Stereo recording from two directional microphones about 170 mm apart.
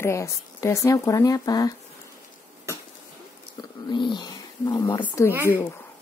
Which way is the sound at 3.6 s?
25° left (ahead or behind).